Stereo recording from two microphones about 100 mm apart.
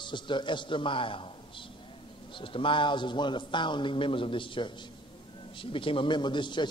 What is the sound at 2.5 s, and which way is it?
A man's voice, 55° left (ahead or behind).